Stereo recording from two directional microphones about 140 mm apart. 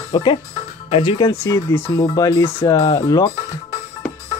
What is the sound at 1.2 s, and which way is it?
Speech, 20° left (ahead or behind).